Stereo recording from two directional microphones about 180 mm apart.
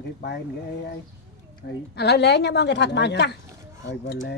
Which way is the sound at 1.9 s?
70° left (ahead or behind).